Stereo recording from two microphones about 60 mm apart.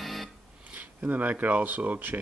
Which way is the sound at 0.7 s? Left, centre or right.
Right.